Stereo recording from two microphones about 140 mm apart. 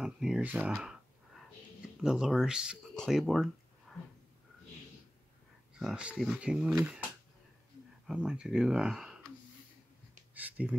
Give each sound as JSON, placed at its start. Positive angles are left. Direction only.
{"t": 0.0, "sound": "a sound", "side_deg": -5}
{"t": 2.0, "sound": "speech", "side_deg": -5}
{"t": 3.9, "sound": "a sound", "side_deg": 0}
{"t": 5.8, "sound": "speech", "side_deg": -5}
{"t": 8.1, "sound": "speech", "side_deg": -5}
{"t": 10.3, "sound": "speech", "side_deg": -10}